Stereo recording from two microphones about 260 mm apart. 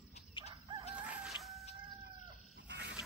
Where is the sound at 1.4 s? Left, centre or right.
Centre.